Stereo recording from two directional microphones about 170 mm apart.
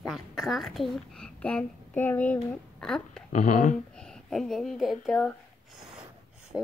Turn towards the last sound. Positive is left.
turn(degrees=-5)  # may be behind; listen again after turning